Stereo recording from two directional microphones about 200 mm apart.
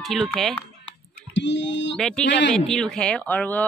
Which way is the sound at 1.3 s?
60° left (ahead or behind).